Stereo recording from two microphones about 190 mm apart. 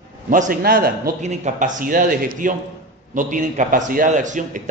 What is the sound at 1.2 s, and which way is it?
A man's voice, 40° right (ahead or behind).